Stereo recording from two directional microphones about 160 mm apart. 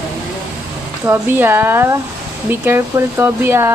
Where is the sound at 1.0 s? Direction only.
15° right (ahead or behind).